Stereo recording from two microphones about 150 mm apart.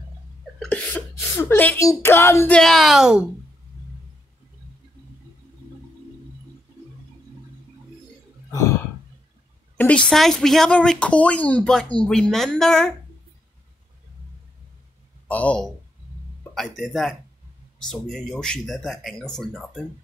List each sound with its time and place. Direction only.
0.6 s sneeze: 10° left (ahead or behind)
1.3 s speech: 15° left (ahead or behind)
1.9 s music: 15° left (ahead or behind)
2.5 s speech: centre (ahead or behind)
9.8 s speech: 10° left (ahead or behind)
15.2 s speech: 10° left (ahead or behind)